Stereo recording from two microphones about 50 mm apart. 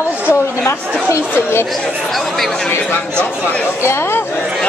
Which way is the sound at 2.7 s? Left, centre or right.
Left.